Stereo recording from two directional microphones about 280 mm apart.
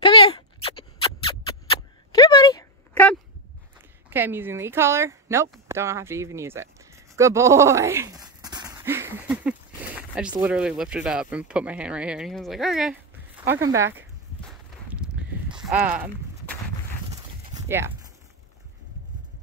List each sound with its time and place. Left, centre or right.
0.0 s a sound: centre
4.1 s a sound: centre
10.3 s speech: centre
13.9 s walk: centre
15.7 s speech: centre
17.6 s speech: centre